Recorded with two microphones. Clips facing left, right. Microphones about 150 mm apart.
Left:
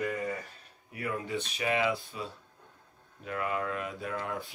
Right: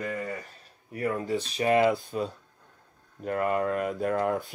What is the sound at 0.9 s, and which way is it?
Speech, 40° right (ahead or behind).